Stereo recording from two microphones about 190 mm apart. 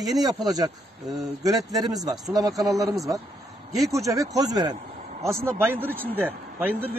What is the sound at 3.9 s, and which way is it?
Speech, 15° right (ahead or behind).